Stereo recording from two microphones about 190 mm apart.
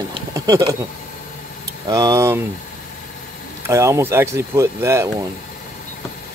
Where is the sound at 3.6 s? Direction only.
15° right (ahead or behind).